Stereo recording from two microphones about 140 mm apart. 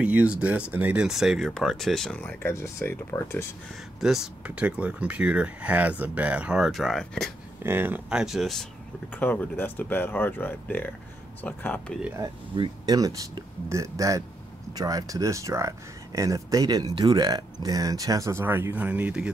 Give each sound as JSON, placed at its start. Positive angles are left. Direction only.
{"t": 0.0, "sound": "speech", "side_deg": -10}
{"t": 4.0, "sound": "speech", "side_deg": -5}
{"t": 7.6, "sound": "speech", "side_deg": -15}
{"t": 9.1, "sound": "speech", "side_deg": 10}
{"t": 12.5, "sound": "speech", "side_deg": -30}